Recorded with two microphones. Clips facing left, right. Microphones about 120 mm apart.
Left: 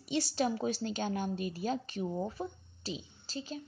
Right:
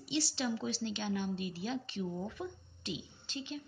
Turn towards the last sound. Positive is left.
turn(degrees=35)  # may be behind; listen again after turning